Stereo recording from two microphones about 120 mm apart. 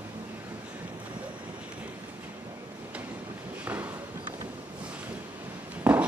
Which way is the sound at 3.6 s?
15° right (ahead or behind).